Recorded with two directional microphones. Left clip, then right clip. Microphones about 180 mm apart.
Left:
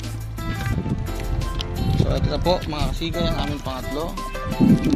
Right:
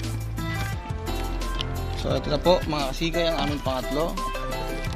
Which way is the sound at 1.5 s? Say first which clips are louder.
Left 4 dB; 10° right (ahead or behind).